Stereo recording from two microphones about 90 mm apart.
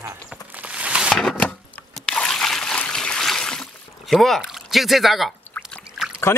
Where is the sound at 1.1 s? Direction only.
10° left (ahead or behind).